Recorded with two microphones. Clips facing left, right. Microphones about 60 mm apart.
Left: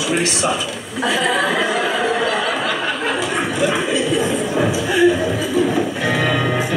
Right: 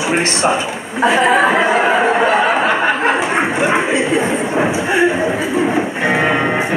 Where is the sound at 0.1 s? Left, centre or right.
Right.